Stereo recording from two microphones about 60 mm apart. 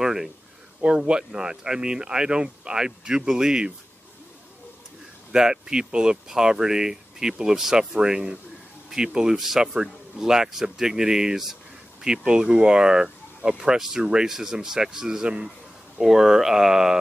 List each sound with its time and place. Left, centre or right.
0.0 s a sound: centre
0.8 s speech: centre
5.3 s speech: centre